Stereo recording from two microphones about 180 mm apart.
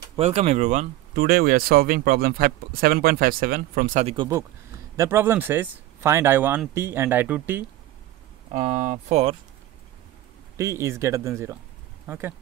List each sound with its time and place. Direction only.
0.1 s speech: 35° right (ahead or behind)
1.1 s speech: 55° right (ahead or behind); by 4.3 s 35° right (ahead or behind)
4.9 s speech: 15° right (ahead or behind)
8.5 s speech: 40° right (ahead or behind)
10.6 s speech: 15° right (ahead or behind)